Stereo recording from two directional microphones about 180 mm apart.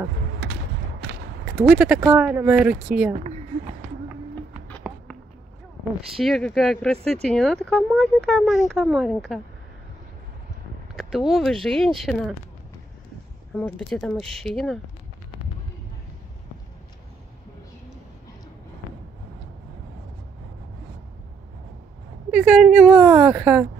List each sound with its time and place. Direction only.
1.5 s speech: 5° right (ahead or behind)
4.9 s a sound: 5° right (ahead or behind)
6.1 s speech: centre (ahead or behind)
11.0 s speech: centre (ahead or behind)
13.6 s speech: 5° left (ahead or behind)
22.3 s speech: 5° right (ahead or behind)